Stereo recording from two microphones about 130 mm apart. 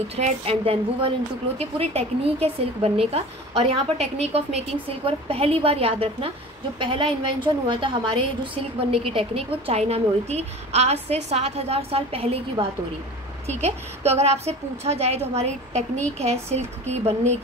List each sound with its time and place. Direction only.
0.1 s a woman's voice: 50° right (ahead or behind)